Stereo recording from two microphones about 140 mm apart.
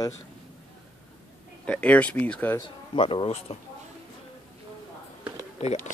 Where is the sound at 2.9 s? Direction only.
40° left (ahead or behind).